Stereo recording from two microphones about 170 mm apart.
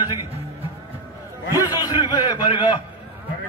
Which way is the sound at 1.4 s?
15° right (ahead or behind).